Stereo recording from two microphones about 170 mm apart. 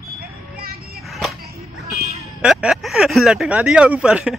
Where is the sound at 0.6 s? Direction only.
65° right (ahead or behind).